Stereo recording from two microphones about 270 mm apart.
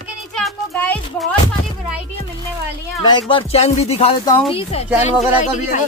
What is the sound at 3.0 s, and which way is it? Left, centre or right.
A woman's voice, centre.